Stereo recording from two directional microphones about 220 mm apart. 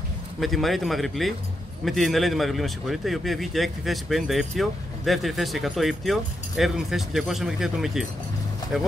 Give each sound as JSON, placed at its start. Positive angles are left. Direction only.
{"t": 0.4, "sound": "speech", "side_deg": 0}